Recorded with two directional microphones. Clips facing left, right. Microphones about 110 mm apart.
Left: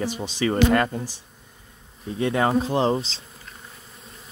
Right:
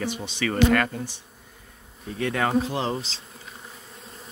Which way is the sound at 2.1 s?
25° left (ahead or behind).